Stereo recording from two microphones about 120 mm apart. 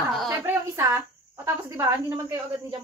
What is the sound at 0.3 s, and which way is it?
Speech, 20° right (ahead or behind).